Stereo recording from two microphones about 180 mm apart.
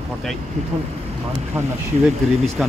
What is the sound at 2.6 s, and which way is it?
Speech, 5° right (ahead or behind).